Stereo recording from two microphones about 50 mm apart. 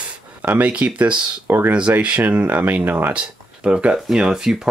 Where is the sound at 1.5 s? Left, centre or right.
Right.